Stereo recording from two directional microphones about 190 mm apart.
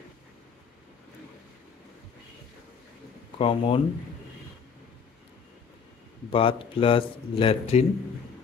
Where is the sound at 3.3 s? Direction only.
30° left (ahead or behind).